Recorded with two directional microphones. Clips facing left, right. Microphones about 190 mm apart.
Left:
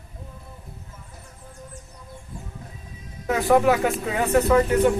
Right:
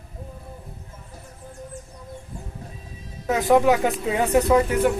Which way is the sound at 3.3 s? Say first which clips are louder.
Right 1 dB; 20° right (ahead or behind).